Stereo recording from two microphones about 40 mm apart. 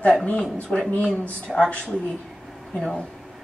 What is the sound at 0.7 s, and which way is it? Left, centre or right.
Speech, left.